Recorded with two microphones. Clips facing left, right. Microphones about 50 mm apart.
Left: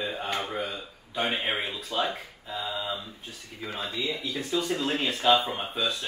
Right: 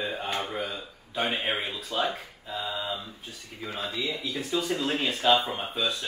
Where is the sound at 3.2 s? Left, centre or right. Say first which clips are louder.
Even; centre.